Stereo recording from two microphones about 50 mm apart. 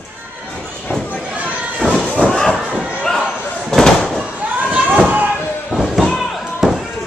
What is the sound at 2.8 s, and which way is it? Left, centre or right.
Slam, centre.